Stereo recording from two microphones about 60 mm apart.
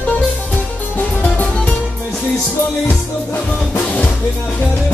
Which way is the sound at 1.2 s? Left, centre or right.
Left.